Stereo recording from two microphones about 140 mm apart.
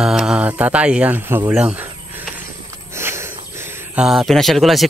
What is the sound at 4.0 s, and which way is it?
Speech, centre (ahead or behind).